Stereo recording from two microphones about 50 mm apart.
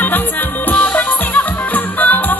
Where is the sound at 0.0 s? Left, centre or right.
Left.